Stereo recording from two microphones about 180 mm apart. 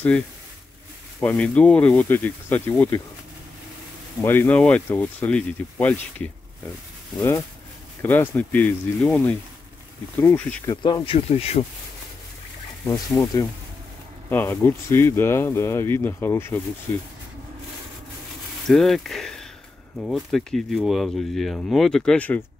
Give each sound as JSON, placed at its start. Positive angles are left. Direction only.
{"t": 1.2, "sound": "speech", "side_deg": 10}
{"t": 4.2, "sound": "speech", "side_deg": 10}
{"t": 10.7, "sound": "speech", "side_deg": 25}
{"t": 12.8, "sound": "speech", "side_deg": 15}
{"t": 18.7, "sound": "speech", "side_deg": 0}